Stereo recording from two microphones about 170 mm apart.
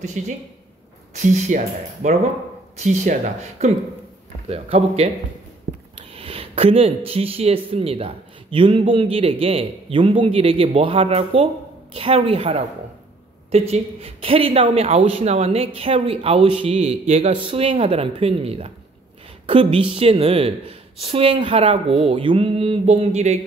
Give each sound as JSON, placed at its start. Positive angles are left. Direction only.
{"t": 0.2, "sound": "a man's voice", "side_deg": -45}
{"t": 5.9, "sound": "sniff", "side_deg": -35}
{"t": 7.1, "sound": "a man's voice", "side_deg": -35}